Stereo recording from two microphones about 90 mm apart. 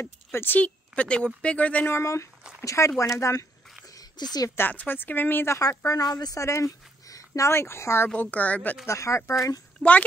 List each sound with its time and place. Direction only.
0.0 s speech: 25° left (ahead or behind)
1.9 s speech: 30° left (ahead or behind)
3.9 s a sound: 45° left (ahead or behind)
4.6 s speech: 20° left (ahead or behind)
5.9 s speech: 40° left (ahead or behind)
8.2 s speech: 20° left (ahead or behind)
8.8 s speech: 35° left (ahead or behind)
9.8 s speech: 15° left (ahead or behind)